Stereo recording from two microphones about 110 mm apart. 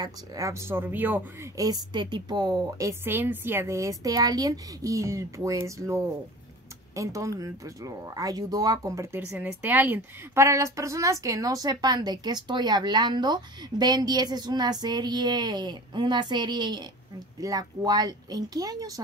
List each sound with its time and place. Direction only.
0.0 s speech: 30° right (ahead or behind)
1.6 s a woman's voice: 40° right (ahead or behind)
2.9 s a woman's voice: 20° right (ahead or behind)
9.4 s a woman's voice: 15° right (ahead or behind); by 18.9 s 35° right (ahead or behind)